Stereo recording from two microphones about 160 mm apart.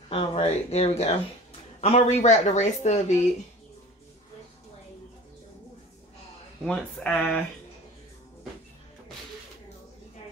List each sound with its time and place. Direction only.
0.1 s speech: 35° left (ahead or behind)
6.6 s speech: 5° left (ahead or behind)